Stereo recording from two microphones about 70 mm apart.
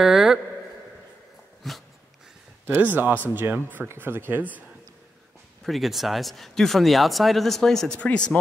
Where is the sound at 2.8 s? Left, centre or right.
Right.